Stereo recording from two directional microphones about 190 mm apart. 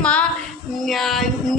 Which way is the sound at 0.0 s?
5° left (ahead or behind).